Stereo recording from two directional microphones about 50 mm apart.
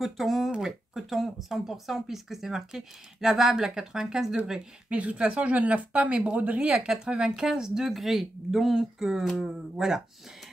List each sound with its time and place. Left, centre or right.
0.0 s speech: centre
4.8 s speech: right
6.7 s speech: centre